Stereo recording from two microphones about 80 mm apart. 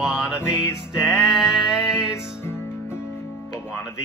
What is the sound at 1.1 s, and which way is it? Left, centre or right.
Music, centre.